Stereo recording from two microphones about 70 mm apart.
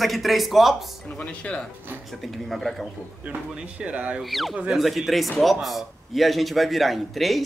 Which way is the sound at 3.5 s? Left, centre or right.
Centre.